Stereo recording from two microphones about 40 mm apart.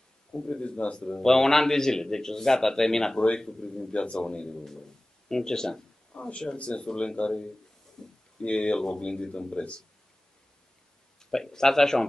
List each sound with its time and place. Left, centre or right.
0.5 s speech: left
0.9 s a man's voice: centre
6.1 s speech: left
8.0 s a sound: centre
8.4 s speech: left
11.1 s speech: centre